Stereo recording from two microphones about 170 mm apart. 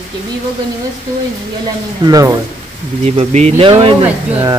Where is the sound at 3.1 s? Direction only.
40° right (ahead or behind).